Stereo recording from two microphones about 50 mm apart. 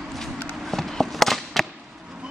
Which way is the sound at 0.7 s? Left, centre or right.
Centre.